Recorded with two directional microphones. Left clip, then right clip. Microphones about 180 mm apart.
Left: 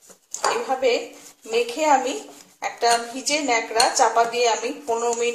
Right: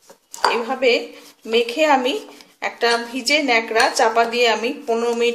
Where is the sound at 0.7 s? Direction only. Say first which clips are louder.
Right 3 dB; 35° right (ahead or behind).